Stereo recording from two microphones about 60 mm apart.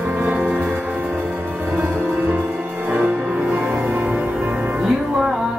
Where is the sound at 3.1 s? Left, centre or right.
Centre.